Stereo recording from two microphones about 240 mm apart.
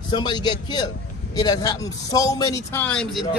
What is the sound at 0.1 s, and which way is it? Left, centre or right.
A man's voice, centre.